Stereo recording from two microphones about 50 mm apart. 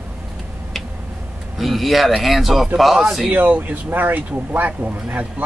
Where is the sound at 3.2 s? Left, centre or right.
Right.